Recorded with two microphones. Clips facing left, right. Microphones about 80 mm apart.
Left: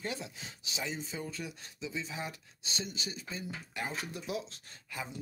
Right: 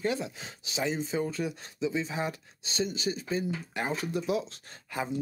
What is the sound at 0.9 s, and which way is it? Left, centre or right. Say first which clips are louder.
Speech: right 10 dB; right.